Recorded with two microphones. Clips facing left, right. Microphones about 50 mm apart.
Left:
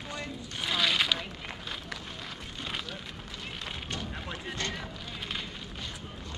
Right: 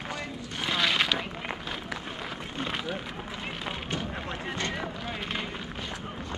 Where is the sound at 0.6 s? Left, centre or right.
Centre.